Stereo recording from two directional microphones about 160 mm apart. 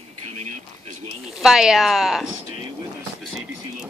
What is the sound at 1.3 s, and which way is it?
Speech, 5° right (ahead or behind).